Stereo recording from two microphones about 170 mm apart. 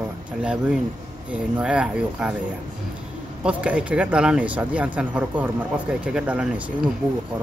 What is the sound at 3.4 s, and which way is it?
Speech, 5° right (ahead or behind).